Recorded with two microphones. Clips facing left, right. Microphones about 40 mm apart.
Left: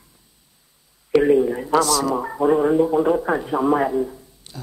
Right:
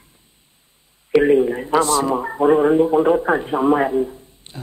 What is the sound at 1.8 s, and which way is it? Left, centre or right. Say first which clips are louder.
Speech: right 2 dB; right.